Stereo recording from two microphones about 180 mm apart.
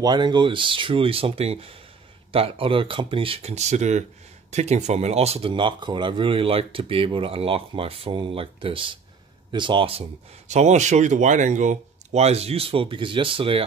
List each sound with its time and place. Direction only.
0.0 s speech: 25° right (ahead or behind)